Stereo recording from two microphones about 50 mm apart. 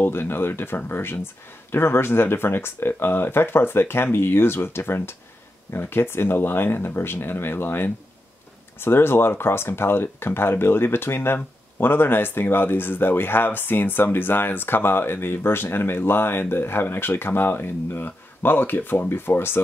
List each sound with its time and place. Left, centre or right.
0.0 s speech: left